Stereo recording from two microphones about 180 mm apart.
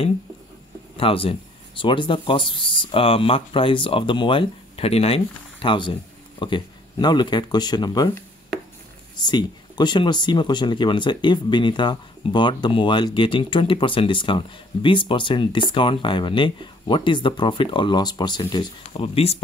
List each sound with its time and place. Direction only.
0.9 s speech: 30° left (ahead or behind)